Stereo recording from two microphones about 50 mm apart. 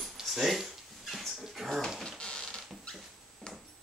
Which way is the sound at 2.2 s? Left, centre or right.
Centre.